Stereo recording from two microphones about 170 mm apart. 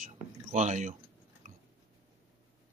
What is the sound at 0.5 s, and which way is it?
Speech, 45° right (ahead or behind).